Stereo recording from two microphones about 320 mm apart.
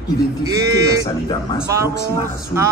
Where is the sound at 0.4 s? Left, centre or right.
Centre.